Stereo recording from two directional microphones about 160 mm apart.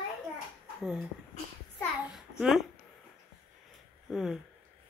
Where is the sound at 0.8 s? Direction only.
5° right (ahead or behind).